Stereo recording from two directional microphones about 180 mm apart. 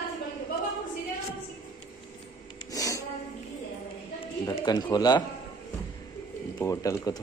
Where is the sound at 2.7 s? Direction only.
20° left (ahead or behind).